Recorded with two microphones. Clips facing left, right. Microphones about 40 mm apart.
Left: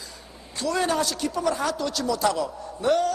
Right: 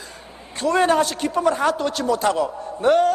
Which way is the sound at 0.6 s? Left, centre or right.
Right.